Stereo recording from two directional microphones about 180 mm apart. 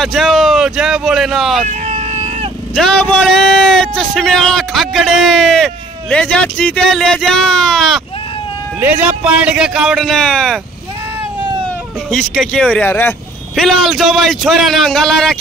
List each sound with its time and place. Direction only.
0.0 s speech: centre (ahead or behind)
1.7 s vehicle: 40° right (ahead or behind)
2.7 s speech: 5° left (ahead or behind)
8.7 s speech: 10° right (ahead or behind)
12.1 s speech: 5° left (ahead or behind)